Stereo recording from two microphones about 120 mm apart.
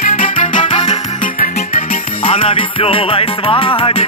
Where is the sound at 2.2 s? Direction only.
50° left (ahead or behind).